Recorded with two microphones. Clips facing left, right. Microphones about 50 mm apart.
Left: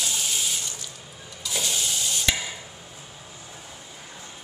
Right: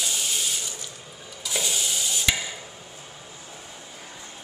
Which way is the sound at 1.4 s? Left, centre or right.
Centre.